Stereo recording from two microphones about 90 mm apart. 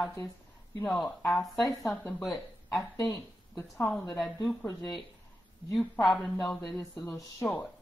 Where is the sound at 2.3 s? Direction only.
45° left (ahead or behind).